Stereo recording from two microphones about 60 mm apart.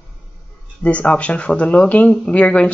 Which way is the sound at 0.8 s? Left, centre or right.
Left.